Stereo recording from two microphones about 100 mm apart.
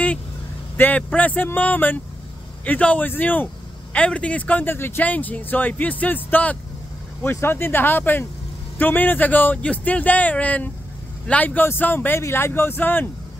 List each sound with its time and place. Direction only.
0.7 s speech: 15° left (ahead or behind)